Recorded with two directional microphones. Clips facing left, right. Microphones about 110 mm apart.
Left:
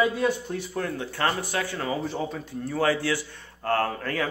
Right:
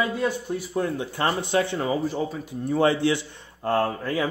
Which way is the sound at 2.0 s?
5° right (ahead or behind).